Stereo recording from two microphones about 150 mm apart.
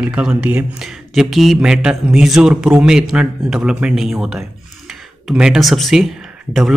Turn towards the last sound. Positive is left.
turn(degrees=0)  # may be behind; listen again after turning